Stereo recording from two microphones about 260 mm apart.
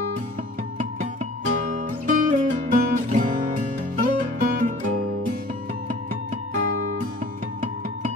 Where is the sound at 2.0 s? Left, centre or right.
Right.